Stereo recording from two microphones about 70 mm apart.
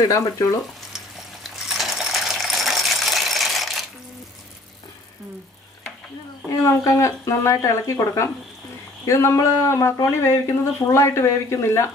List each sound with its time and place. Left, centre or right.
0.0 s speech: left
1.4 s coin: centre
6.5 s speech: left